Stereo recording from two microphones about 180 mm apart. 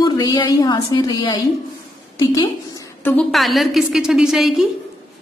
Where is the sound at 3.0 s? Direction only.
10° left (ahead or behind).